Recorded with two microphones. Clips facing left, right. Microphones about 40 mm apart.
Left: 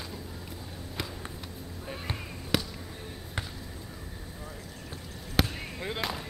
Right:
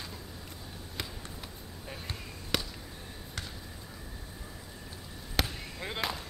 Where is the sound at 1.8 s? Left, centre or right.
Centre.